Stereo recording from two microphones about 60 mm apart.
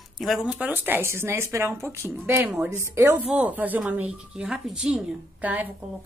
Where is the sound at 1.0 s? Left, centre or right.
Right.